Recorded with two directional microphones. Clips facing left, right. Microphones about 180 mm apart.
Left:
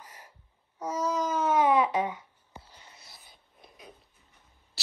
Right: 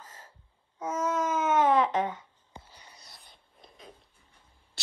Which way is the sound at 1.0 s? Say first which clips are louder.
Even; 10° right (ahead or behind).